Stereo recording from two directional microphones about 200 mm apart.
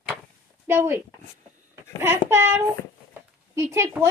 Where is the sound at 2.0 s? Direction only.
10° right (ahead or behind).